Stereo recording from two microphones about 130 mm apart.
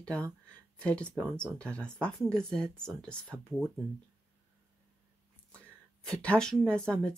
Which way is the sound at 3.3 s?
25° right (ahead or behind).